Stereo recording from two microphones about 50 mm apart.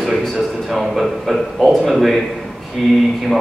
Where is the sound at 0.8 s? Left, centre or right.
Centre.